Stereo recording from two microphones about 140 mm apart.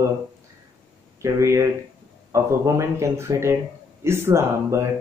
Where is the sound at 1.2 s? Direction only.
20° right (ahead or behind).